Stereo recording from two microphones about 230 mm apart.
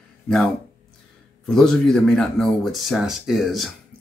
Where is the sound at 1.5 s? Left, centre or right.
Centre.